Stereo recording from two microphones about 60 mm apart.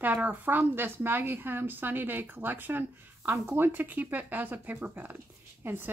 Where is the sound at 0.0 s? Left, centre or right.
Right.